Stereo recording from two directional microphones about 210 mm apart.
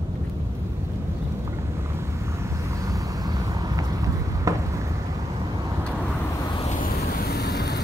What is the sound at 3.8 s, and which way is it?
Vehicle, 15° right (ahead or behind).